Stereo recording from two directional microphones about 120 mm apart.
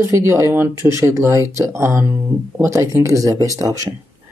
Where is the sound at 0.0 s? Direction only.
20° right (ahead or behind).